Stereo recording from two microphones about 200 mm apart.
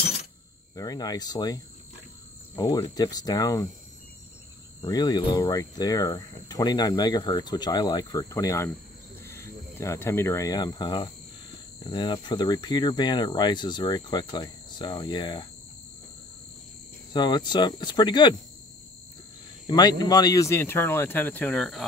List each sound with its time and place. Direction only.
0.7 s speech: 20° left (ahead or behind)
4.8 s speech: 20° left (ahead or behind)
9.2 s cricket: 10° left (ahead or behind)
11.8 s speech: 20° left (ahead or behind)
17.1 s speech: 20° left (ahead or behind)
19.7 s speech: 20° left (ahead or behind); by 21.8 s centre (ahead or behind)